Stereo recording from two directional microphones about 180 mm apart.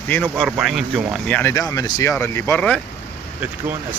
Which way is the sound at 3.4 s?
10° right (ahead or behind).